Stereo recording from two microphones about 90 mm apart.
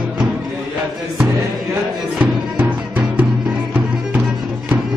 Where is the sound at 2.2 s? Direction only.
15° right (ahead or behind).